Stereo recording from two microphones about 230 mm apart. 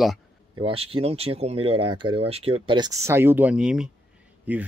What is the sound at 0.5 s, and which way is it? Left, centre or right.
Speech, right.